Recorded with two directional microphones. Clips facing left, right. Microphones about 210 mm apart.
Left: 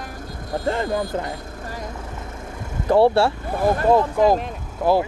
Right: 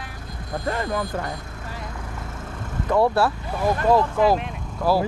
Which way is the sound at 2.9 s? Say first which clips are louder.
Left 4 dB; 30° left (ahead or behind).